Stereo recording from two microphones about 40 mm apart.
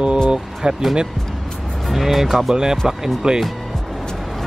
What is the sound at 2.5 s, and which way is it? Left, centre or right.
Speech, centre.